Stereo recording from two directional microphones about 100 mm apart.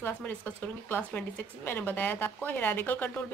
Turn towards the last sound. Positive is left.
turn(degrees=20)  # may be behind; listen again after turning